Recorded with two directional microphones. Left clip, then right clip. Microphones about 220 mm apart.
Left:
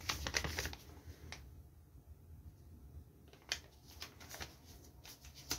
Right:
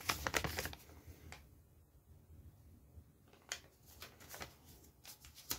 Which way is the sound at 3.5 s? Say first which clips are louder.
Left 5 dB; 10° right (ahead or behind).